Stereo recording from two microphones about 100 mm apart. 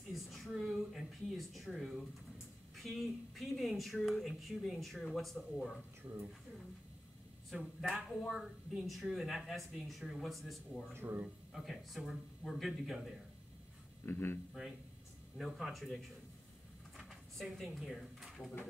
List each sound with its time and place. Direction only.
0.1 s a sound: centre (ahead or behind)
2.7 s a woman's voice: centre (ahead or behind)
7.4 s a woman's voice: 5° right (ahead or behind)
11.0 s speech: 20° right (ahead or behind)
11.5 s a woman's voice: centre (ahead or behind)
14.0 s a man's voice: 20° left (ahead or behind)
15.3 s a woman's voice: centre (ahead or behind)
16.9 s bird: centre (ahead or behind)